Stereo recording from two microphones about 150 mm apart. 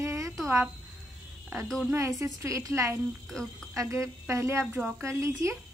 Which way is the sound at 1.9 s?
20° right (ahead or behind).